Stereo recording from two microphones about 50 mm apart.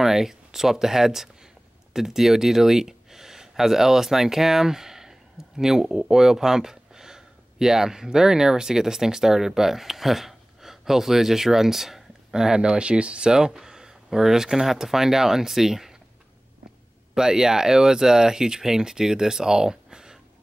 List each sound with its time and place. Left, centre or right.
0.0 s speech: centre
17.1 s speech: centre